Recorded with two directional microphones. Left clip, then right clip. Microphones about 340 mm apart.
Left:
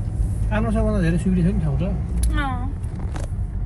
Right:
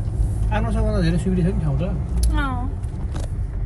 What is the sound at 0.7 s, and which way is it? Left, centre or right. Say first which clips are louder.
Speech: left 1 dB; right.